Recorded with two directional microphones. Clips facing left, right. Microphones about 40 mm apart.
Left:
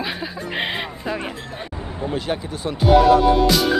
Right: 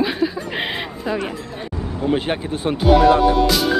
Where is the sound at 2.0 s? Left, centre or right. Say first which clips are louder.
Right 4 dB; right.